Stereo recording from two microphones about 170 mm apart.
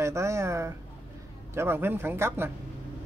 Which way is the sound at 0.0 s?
15° right (ahead or behind).